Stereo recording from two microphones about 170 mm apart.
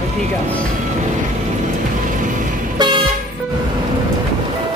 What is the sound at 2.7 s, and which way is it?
Vehicle, 25° right (ahead or behind).